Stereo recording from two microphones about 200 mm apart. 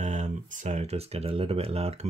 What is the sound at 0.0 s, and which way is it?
Speech, 35° right (ahead or behind).